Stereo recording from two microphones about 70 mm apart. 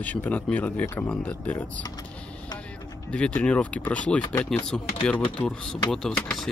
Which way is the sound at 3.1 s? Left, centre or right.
Centre.